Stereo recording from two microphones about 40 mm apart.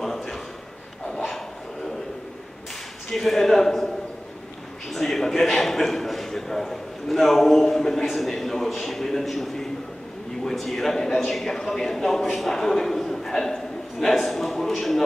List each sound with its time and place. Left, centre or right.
0.0 s a sound: centre
3.1 s a man's voice: centre
4.9 s a man's voice: centre